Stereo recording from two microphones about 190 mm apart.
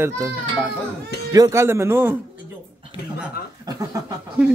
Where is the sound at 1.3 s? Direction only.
15° right (ahead or behind).